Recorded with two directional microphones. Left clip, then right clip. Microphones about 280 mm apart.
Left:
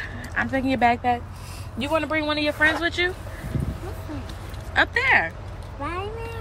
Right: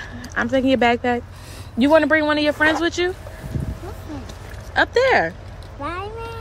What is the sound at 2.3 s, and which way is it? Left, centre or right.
Speech, right.